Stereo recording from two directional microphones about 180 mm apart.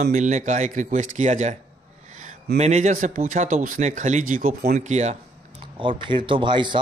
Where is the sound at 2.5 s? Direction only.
40° right (ahead or behind).